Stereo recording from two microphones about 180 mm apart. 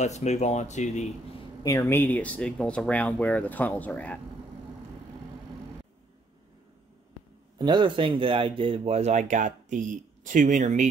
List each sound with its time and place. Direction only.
0.0 s speech: 40° left (ahead or behind)
1.6 s speech: 20° left (ahead or behind)
7.5 s speech: 25° right (ahead or behind); by 10.9 s 45° right (ahead or behind)